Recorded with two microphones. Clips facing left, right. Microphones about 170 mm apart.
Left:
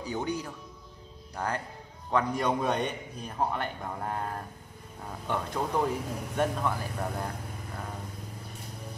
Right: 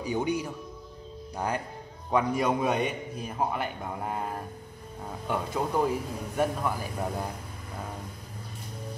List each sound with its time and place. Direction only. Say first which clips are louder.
0.0 s a man's voice: right 4 dB; 10° right (ahead or behind)